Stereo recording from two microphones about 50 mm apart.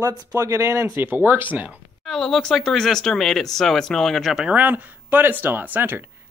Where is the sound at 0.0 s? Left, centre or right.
Right.